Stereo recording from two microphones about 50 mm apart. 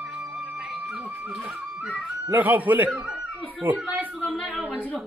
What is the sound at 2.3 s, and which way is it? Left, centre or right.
Speech, right.